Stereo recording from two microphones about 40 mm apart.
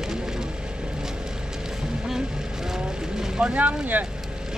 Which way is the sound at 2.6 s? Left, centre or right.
Centre.